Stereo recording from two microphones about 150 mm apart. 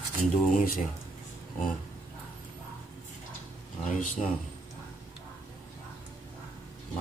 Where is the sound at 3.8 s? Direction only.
55° left (ahead or behind).